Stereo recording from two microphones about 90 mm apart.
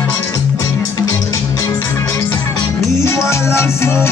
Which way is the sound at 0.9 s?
35° left (ahead or behind).